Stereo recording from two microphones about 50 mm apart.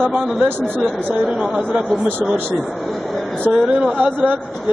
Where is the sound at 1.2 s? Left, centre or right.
Centre.